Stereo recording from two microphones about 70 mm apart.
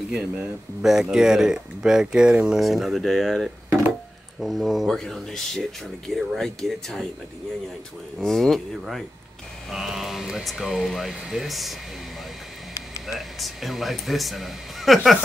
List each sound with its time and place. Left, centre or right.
0.1 s speech: right
0.8 s speech: centre
8.2 s speech: centre
13.0 s speech: centre